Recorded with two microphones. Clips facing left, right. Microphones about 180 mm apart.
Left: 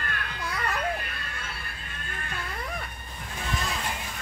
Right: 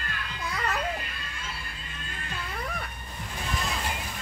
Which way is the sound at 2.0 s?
55° left (ahead or behind).